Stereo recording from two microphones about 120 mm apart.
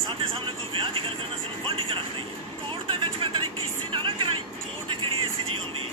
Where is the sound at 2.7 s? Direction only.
45° right (ahead or behind).